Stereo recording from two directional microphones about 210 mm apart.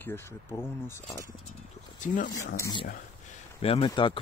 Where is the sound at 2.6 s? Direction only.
20° left (ahead or behind).